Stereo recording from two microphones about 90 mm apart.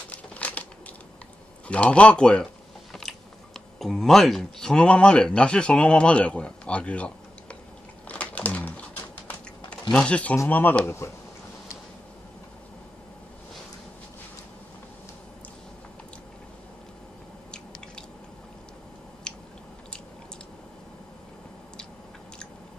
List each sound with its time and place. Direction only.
0.1 s crumpling: 15° left (ahead or behind)
1.7 s speech: 15° left (ahead or behind)
8.1 s typing: 15° left (ahead or behind)
9.8 s speech: 10° left (ahead or behind); by 11.1 s 25° left (ahead or behind)
17.5 s drip: 10° left (ahead or behind)